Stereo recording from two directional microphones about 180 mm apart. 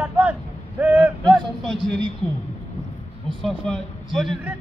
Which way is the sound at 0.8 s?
10° right (ahead or behind).